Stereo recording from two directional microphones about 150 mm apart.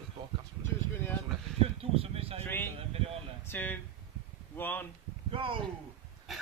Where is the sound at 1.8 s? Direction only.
40° right (ahead or behind).